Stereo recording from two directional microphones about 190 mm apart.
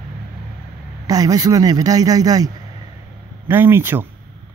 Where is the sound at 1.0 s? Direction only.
20° right (ahead or behind).